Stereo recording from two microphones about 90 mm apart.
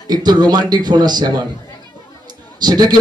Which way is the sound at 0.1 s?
50° right (ahead or behind).